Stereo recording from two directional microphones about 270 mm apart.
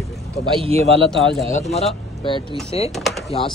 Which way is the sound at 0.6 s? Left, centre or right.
Right.